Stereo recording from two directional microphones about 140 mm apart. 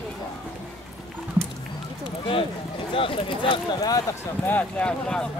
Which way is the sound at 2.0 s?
40° left (ahead or behind).